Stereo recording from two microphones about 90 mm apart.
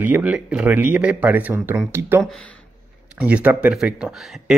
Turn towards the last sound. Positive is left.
turn(degrees=-5)  # may be behind; listen again after turning